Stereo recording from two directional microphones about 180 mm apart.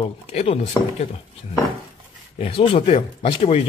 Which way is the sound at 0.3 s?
35° left (ahead or behind).